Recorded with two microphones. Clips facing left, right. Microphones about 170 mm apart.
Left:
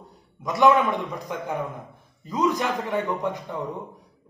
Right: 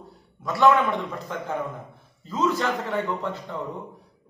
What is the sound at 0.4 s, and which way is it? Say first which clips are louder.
A man's voice: left 1 dB; 20° left (ahead or behind).